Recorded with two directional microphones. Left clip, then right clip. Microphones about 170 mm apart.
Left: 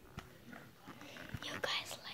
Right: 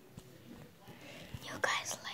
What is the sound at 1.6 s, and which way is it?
Whispering, 5° right (ahead or behind).